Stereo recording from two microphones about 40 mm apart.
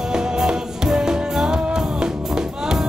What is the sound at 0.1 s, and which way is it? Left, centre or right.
Music, centre.